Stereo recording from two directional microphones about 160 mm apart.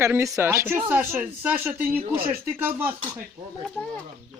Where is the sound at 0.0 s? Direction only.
20° right (ahead or behind).